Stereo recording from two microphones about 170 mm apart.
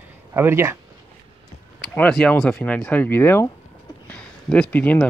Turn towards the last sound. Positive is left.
turn(degrees=10)  # may be behind; listen again after turning